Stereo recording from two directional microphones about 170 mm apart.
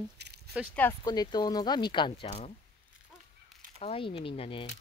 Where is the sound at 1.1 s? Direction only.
25° left (ahead or behind).